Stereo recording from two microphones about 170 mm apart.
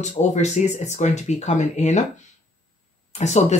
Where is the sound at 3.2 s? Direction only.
40° left (ahead or behind).